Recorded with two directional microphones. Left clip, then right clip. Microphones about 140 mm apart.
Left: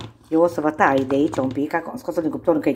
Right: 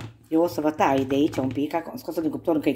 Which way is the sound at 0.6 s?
20° right (ahead or behind).